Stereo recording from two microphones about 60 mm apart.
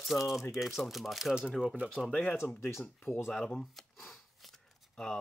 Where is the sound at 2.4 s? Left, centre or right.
Left.